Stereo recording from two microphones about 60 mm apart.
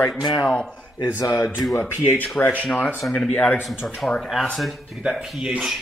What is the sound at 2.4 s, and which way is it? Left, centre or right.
Speech, left.